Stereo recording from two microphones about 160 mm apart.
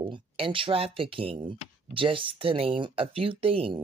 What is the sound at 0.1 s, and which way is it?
Speech, 35° right (ahead or behind).